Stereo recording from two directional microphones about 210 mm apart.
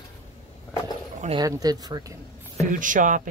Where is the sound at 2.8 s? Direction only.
40° right (ahead or behind).